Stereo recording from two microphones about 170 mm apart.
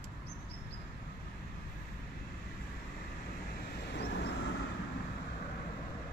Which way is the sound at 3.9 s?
80° left.